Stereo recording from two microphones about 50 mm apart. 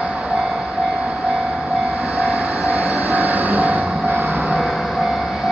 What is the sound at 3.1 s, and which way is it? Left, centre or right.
Vehicle, right.